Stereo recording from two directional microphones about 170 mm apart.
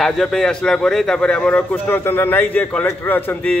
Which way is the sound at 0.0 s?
Centre (ahead or behind).